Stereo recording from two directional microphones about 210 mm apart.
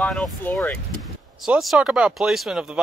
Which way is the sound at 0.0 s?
Centre (ahead or behind).